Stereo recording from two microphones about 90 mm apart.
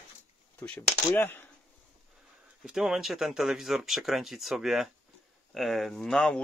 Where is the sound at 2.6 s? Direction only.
5° right (ahead or behind).